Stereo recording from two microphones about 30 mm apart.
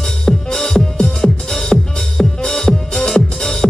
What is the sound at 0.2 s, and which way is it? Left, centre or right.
Music, centre.